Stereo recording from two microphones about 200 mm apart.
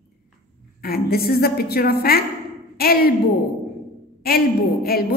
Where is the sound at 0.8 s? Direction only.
50° left (ahead or behind).